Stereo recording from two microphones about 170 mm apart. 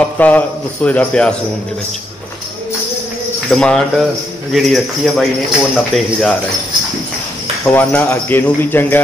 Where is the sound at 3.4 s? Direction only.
5° left (ahead or behind).